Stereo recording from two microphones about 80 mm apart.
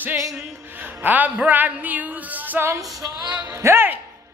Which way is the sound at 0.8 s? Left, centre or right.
Right.